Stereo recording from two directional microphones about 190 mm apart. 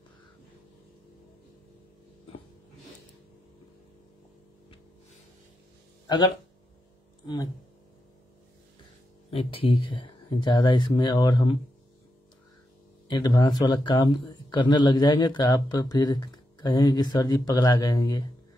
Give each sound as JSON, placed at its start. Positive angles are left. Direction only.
{"t": 9.3, "sound": "speech", "side_deg": 30}
{"t": 13.1, "sound": "speech", "side_deg": 20}